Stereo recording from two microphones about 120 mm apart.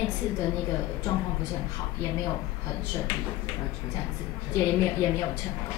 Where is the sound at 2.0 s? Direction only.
30° left (ahead or behind).